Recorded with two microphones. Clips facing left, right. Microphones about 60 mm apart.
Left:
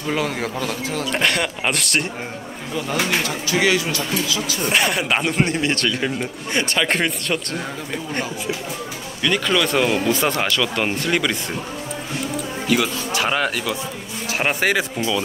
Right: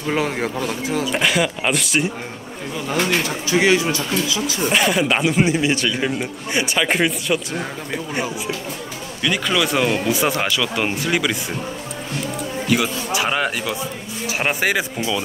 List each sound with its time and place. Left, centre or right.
0.1 s speech: right
0.9 s speech: centre
3.4 s speech: right
4.6 s speech: centre
12.6 s speech: centre